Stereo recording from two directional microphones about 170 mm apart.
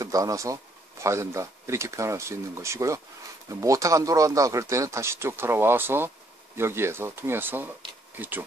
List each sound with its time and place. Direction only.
0.0 s speech: 20° right (ahead or behind)